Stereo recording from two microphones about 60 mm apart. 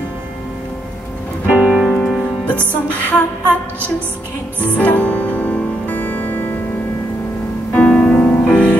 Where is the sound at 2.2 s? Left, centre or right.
Left.